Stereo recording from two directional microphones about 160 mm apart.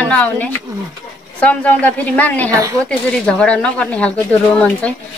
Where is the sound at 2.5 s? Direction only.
20° right (ahead or behind).